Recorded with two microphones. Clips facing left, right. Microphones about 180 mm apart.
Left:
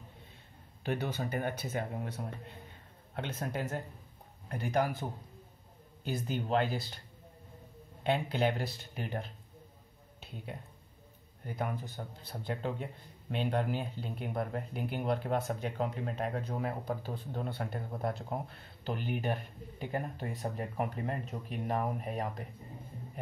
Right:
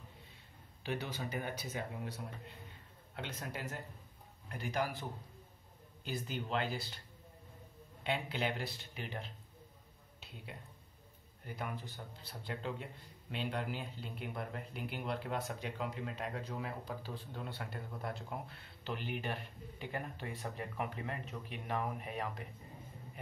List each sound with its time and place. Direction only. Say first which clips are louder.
0.8 s a man's voice: left 5 dB; 50° left (ahead or behind)
6.0 s a man's voice: left 6 dB; 45° left (ahead or behind)
8.0 s a man's voice: left 7 dB; 45° left (ahead or behind)
11.4 s a man's voice: left 6 dB; 45° left (ahead or behind)